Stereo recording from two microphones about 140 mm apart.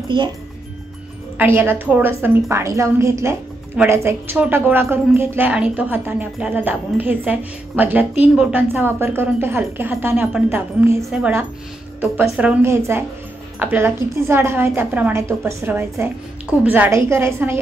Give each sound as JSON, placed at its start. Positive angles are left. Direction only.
{"t": 1.4, "sound": "a woman's voice", "side_deg": -15}